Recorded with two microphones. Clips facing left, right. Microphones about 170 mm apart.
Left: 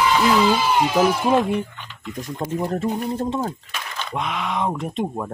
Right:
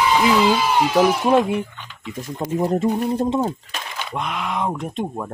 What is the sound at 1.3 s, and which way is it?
Speech, centre (ahead or behind).